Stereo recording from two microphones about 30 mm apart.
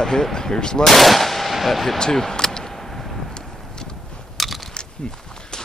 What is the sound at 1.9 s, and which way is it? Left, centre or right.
Speech, centre.